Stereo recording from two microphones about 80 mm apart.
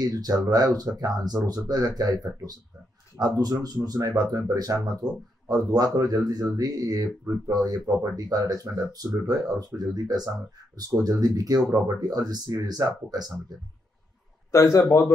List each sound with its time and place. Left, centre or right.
0.0 s speech: right
14.5 s a man's voice: left